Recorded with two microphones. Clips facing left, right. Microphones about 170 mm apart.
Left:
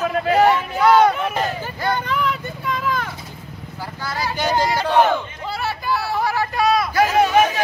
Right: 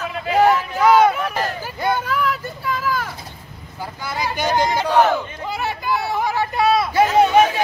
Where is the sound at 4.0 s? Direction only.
15° right (ahead or behind).